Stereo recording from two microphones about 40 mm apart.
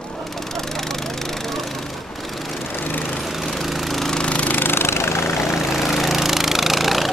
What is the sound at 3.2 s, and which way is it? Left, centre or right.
Engine, centre.